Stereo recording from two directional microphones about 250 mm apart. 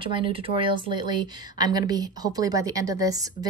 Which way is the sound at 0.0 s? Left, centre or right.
Right.